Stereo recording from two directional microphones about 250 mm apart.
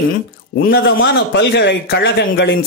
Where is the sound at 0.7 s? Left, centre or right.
Left.